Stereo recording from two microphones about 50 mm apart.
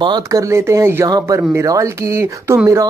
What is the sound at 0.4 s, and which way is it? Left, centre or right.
Speech, right.